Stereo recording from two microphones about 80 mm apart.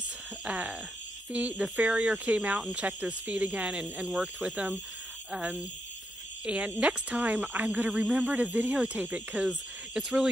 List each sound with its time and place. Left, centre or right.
0.5 s speech: centre